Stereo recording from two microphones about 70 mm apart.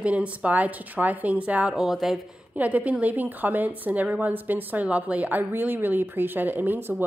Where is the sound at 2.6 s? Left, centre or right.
Right.